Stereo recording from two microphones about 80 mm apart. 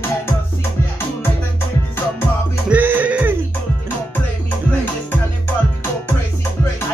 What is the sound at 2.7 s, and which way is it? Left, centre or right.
Music, right.